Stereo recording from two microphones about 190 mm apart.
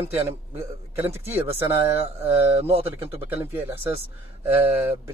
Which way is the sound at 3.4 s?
10° right (ahead or behind).